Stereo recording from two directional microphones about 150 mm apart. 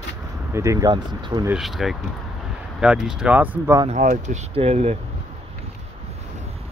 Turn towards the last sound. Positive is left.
turn(degrees=-45)  # may be behind; listen again after turning